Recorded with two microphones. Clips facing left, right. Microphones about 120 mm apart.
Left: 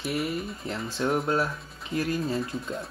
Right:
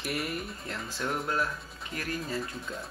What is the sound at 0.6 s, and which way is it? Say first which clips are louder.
Speech: left 8 dB; 25° left (ahead or behind).